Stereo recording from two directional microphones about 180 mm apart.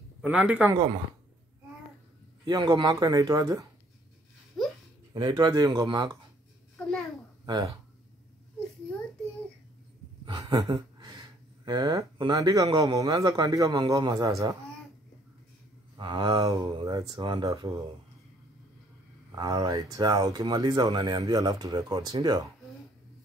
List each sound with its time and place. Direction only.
0.2 s speech: 5° right (ahead or behind)
2.4 s speech: 25° right (ahead or behind)
4.6 s a sound: centre (ahead or behind)
5.1 s speech: 20° right (ahead or behind)
7.4 s speech: 25° right (ahead or behind)
10.2 s speech: 25° right (ahead or behind)
16.0 s speech: 25° right (ahead or behind)
19.3 s speech: 20° right (ahead or behind)